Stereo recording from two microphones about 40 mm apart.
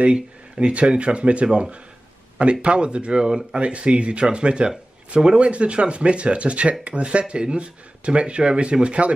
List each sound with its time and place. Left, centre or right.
0.0 s speech: right